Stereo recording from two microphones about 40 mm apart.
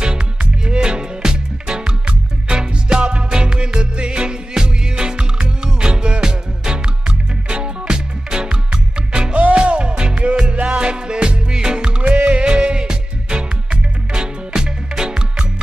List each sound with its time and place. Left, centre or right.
0.0 s music: right